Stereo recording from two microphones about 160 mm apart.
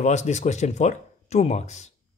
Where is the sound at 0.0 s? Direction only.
45° left (ahead or behind).